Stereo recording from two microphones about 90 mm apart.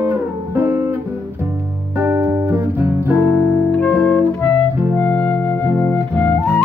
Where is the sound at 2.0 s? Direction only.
20° right (ahead or behind).